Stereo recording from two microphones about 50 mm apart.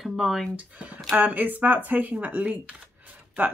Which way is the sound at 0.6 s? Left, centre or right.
Right.